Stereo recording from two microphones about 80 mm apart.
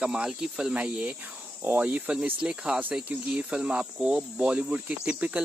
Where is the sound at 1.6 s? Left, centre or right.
Right.